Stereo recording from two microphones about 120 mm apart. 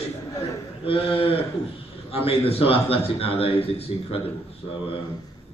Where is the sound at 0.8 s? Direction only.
50° left (ahead or behind).